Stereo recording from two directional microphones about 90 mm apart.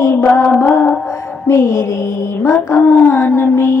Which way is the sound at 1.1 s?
30° left (ahead or behind).